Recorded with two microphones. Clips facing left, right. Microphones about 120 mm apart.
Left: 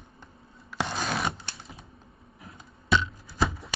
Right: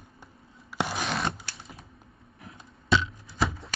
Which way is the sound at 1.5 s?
Centre (ahead or behind).